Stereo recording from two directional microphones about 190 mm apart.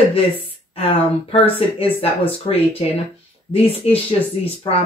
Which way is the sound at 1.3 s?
30° left (ahead or behind).